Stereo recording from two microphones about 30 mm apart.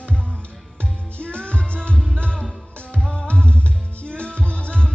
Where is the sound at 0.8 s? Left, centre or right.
Left.